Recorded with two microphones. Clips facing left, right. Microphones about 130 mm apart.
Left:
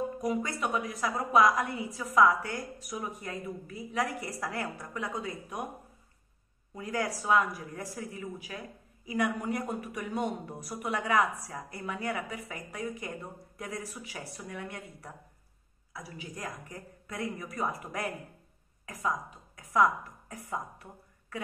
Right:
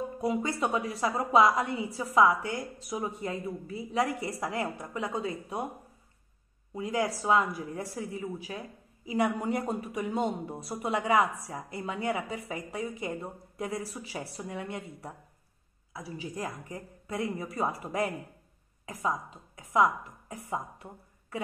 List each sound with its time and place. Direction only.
0.2 s speech: 25° right (ahead or behind)
6.7 s a woman's voice: 20° right (ahead or behind)